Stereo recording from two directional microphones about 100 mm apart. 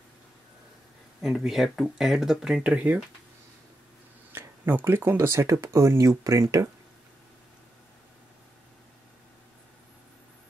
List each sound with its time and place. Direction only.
1.2 s speech: 5° right (ahead or behind)
4.3 s speech: 20° right (ahead or behind)